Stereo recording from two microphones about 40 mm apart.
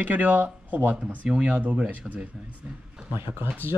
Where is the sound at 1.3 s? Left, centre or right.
Right.